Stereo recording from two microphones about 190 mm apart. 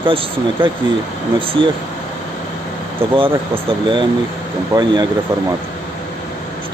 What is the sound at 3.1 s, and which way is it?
Speech, 30° right (ahead or behind).